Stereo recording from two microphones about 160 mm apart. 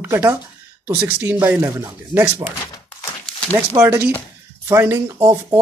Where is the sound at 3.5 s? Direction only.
10° right (ahead or behind).